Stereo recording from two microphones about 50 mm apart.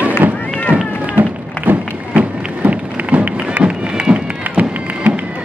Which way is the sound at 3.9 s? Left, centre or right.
Centre.